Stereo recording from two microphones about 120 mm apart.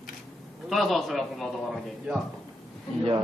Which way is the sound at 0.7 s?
Centre (ahead or behind).